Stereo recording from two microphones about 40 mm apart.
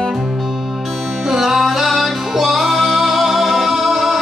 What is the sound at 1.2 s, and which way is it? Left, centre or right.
Music, centre.